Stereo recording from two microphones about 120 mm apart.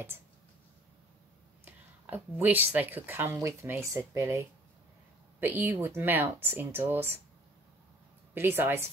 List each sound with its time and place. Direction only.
1.6 s speech: 15° right (ahead or behind)
8.4 s speech: 20° right (ahead or behind)